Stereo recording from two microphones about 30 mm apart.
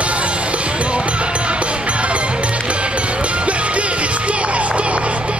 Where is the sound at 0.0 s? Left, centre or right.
Right.